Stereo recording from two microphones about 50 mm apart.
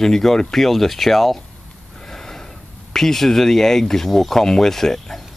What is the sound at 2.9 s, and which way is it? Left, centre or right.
Speech, centre.